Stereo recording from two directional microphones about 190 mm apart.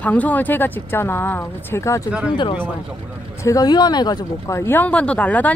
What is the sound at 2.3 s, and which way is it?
Speech, 25° left (ahead or behind).